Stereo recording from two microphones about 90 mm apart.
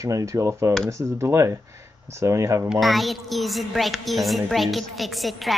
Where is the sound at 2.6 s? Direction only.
Centre (ahead or behind).